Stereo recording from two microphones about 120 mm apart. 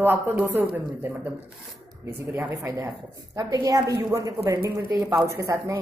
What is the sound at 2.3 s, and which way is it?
A woman's voice, 20° right (ahead or behind).